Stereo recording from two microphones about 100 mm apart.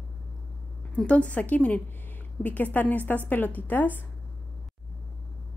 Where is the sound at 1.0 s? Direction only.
15° left (ahead or behind).